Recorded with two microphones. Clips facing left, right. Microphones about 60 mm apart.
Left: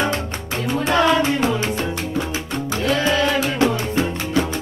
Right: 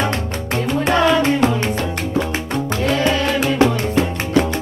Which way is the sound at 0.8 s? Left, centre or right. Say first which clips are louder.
Right 1 dB; right.